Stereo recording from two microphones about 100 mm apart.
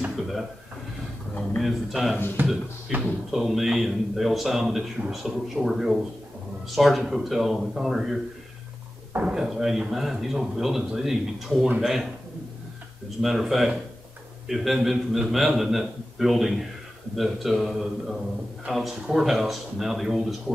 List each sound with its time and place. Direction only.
0.1 s drawer open or close: centre (ahead or behind)
1.6 s speech: centre (ahead or behind)
2.4 s speech: 20° right (ahead or behind)
3.3 s speech: centre (ahead or behind)
13.2 s speech: centre (ahead or behind)